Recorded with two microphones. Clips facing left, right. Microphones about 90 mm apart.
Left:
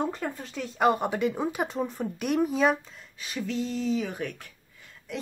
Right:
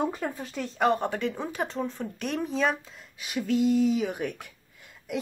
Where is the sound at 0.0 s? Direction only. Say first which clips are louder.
Right 1 dB; 10° right (ahead or behind).